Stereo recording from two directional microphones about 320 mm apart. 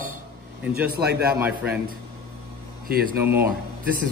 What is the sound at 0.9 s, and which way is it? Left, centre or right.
Speech, right.